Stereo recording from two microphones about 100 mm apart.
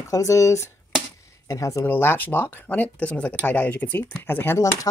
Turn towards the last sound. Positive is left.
turn(degrees=20)  # may be behind; listen again after turning